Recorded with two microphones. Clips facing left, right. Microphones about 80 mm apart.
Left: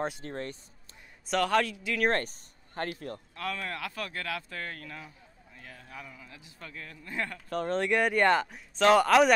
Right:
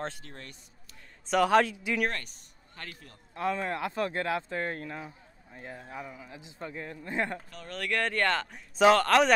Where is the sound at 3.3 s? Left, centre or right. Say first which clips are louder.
Right 7 dB; right.